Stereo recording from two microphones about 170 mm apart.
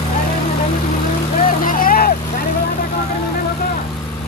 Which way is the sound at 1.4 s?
55° left (ahead or behind).